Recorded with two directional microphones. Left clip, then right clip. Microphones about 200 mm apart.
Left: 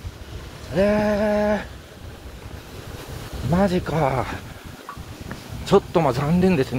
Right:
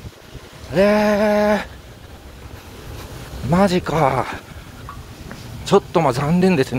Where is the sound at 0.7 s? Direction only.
25° right (ahead or behind).